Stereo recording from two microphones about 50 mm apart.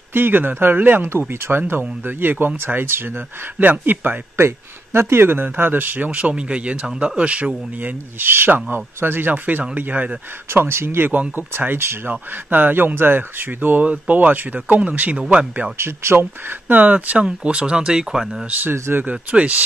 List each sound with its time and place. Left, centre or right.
0.1 s speech: right
3.5 s speech: right
6.0 s speech: right
8.2 s speech: right
10.5 s speech: right
11.1 s speech: right
11.5 s speech: right
15.8 s speech: right; by 18.4 s centre
18.6 s speech: right
19.0 s speech: right